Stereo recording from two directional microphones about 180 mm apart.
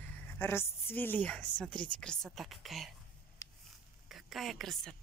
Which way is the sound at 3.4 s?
20° left (ahead or behind).